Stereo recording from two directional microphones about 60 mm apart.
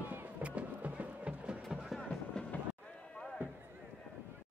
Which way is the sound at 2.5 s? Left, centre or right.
Left.